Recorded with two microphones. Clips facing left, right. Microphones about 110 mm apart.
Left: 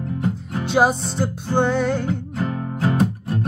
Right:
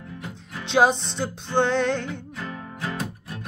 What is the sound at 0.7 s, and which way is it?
Music, 10° left (ahead or behind).